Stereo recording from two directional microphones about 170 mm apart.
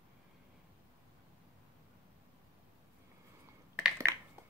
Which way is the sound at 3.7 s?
15° right (ahead or behind).